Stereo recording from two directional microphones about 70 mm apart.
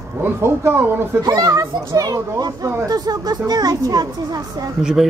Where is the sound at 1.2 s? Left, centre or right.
Right.